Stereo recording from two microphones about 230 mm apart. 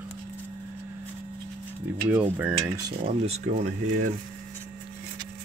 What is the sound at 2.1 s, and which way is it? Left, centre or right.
Speech, centre.